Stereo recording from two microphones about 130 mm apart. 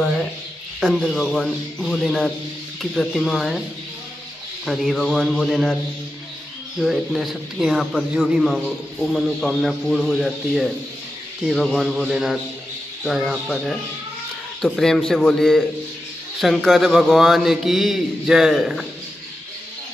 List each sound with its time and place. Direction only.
0.7 s speech: centre (ahead or behind)
4.6 s speech: centre (ahead or behind)
6.8 s speech: centre (ahead or behind)
16.6 s speech: centre (ahead or behind)